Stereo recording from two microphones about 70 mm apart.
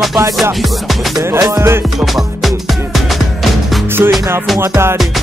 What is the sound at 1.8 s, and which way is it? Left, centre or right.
Music, centre.